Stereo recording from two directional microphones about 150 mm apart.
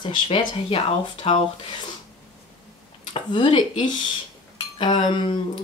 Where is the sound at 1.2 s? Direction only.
40° left (ahead or behind).